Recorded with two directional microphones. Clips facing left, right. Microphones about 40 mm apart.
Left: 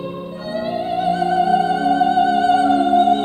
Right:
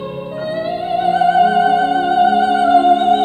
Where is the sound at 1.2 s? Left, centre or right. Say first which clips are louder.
Right 5 dB; right.